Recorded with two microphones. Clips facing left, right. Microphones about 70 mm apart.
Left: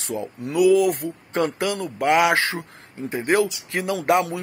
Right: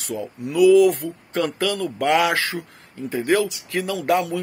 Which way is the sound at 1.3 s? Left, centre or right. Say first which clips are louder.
Even; left.